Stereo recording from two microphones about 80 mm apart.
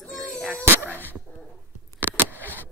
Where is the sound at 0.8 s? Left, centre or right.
Left.